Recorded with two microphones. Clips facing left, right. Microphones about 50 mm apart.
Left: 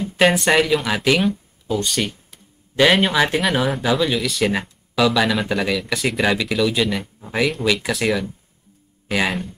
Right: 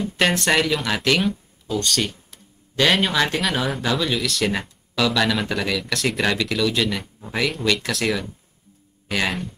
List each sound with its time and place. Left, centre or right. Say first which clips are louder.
0.2 s speech: left 4 dB; centre